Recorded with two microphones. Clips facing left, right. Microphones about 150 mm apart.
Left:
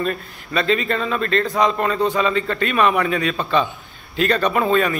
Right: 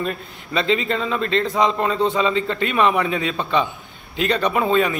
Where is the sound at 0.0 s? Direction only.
20° right (ahead or behind).